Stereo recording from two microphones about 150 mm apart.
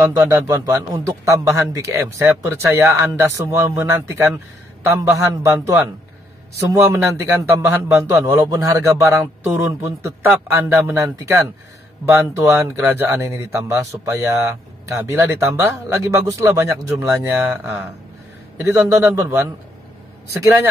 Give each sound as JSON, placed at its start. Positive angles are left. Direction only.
{"t": 0.0, "sound": "a man's voice", "side_deg": -20}